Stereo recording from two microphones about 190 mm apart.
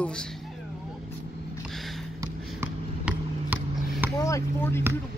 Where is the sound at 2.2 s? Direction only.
10° right (ahead or behind).